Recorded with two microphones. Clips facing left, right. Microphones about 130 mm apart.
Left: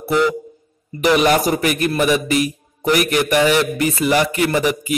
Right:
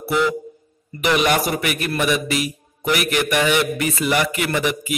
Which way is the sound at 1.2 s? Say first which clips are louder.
Left 4 dB; 35° left (ahead or behind).